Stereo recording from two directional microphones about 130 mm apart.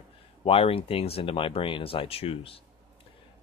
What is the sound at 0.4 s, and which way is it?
Speech, 45° left (ahead or behind).